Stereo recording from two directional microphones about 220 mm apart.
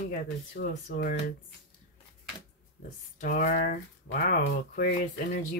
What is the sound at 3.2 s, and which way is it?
Speech, 35° left (ahead or behind).